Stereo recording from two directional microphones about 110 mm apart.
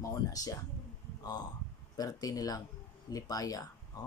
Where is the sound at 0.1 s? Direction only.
30° left (ahead or behind).